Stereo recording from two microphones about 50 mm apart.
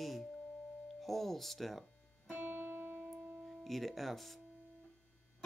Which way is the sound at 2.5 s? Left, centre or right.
Right.